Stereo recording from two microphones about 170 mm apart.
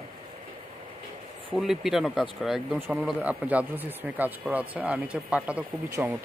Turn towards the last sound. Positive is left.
turn(degrees=-15)  # may be behind; listen again after turning